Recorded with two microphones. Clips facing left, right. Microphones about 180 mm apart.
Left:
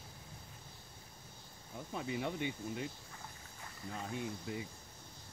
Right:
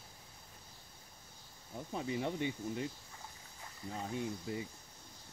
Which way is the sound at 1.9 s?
30° right (ahead or behind).